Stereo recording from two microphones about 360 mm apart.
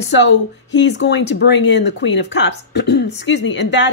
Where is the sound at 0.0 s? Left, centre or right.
Left.